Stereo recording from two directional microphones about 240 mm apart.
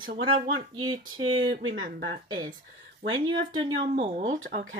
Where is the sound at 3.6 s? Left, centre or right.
Right.